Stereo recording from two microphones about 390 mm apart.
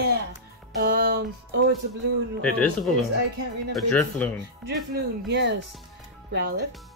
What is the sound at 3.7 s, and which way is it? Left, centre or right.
Speech, centre.